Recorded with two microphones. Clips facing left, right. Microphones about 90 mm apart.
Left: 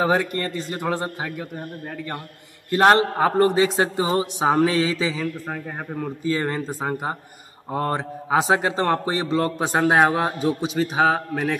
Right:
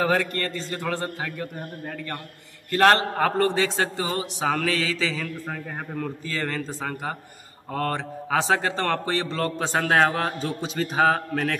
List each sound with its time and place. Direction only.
0.1 s speech: 10° left (ahead or behind)
2.7 s a man's voice: 20° left (ahead or behind)